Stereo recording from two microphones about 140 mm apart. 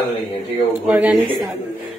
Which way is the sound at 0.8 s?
10° right (ahead or behind).